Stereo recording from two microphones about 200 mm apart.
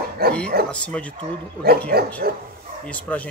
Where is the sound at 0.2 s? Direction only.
50° right (ahead or behind).